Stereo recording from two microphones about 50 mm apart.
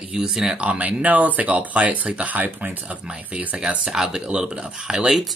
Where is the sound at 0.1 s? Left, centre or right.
Centre.